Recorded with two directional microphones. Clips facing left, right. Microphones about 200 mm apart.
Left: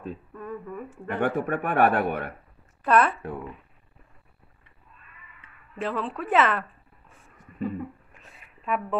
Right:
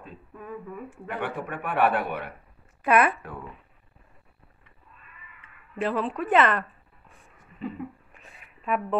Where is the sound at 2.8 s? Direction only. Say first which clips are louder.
Even; 10° right (ahead or behind).